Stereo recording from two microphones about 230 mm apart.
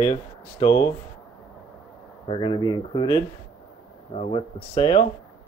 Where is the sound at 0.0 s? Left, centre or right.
Centre.